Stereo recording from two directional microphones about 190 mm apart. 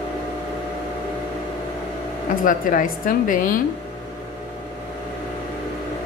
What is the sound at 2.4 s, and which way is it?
A woman's voice, 45° left (ahead or behind).